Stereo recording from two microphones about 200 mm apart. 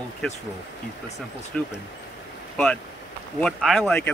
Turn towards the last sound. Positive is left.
turn(degrees=5)  # may be behind; listen again after turning